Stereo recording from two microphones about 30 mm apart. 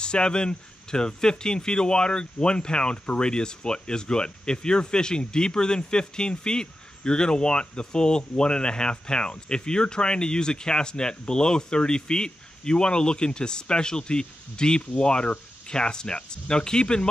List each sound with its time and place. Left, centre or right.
0.0 s speech: left